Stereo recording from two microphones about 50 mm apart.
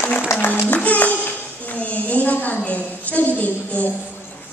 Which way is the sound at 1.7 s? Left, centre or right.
Left.